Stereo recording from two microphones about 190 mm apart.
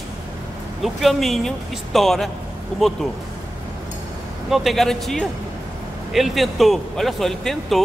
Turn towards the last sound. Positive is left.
turn(degrees=0)  # may be behind; listen again after turning